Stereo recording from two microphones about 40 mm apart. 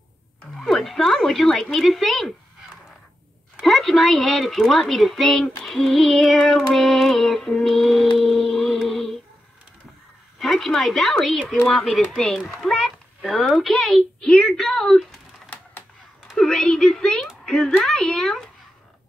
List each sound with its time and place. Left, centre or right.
0.6 s a woman's voice: centre
3.6 s a woman's voice: centre
7.6 s child singing: centre
8.7 s music: centre
10.4 s a woman's voice: centre
12.2 s a woman's voice: centre
12.7 s a sound: centre
13.4 s a woman's voice: centre
14.2 s a woman's voice: left
14.5 s a woman's voice: centre
16.3 s a woman's voice: centre